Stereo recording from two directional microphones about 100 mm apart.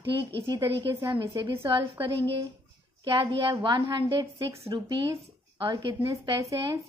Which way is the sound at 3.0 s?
55° right (ahead or behind).